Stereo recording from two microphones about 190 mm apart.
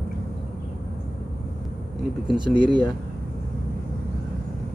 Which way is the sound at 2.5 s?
25° left (ahead or behind).